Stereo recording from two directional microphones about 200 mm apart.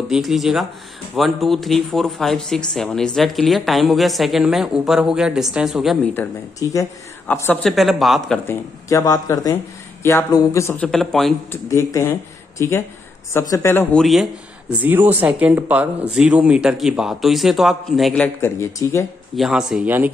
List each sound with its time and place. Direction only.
0.1 s speech: centre (ahead or behind)
6.7 s speech: 15° left (ahead or behind); by 8.4 s centre (ahead or behind)
8.5 s speech: 15° left (ahead or behind)
11.7 s speech: 15° left (ahead or behind)
14.0 s speech: centre (ahead or behind)
19.3 s speech: centre (ahead or behind)